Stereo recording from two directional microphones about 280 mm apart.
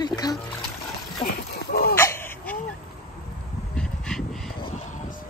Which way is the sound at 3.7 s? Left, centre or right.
Centre.